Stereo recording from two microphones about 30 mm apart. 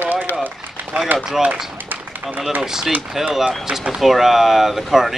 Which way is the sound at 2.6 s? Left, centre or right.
Centre.